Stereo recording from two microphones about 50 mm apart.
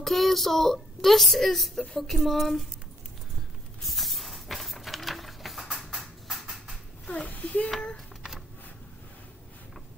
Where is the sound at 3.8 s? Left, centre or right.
Centre.